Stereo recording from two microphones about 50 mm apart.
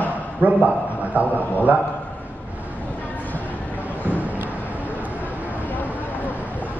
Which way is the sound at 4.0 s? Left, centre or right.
Right.